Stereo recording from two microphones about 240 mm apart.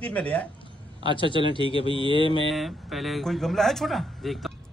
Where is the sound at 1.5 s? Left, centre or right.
Left.